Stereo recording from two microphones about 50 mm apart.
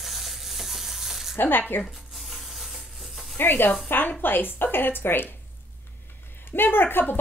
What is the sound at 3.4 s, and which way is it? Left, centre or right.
A woman's voice, left.